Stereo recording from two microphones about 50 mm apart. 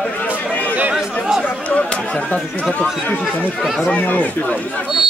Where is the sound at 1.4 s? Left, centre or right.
Left.